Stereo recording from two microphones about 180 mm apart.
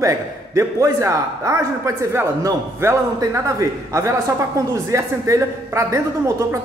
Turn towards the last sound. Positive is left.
turn(degrees=-15)  # may be behind; listen again after turning